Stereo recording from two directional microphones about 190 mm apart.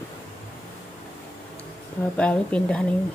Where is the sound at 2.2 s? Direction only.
5° left (ahead or behind).